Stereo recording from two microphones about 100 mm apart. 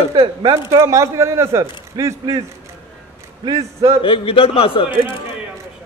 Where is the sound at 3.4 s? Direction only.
35° right (ahead or behind).